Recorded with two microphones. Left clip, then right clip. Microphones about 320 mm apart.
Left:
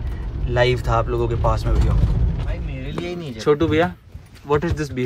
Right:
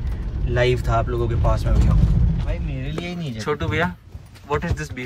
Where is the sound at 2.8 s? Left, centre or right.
Centre.